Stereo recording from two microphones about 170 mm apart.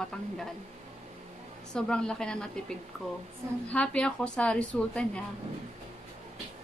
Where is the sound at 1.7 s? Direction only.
5° left (ahead or behind).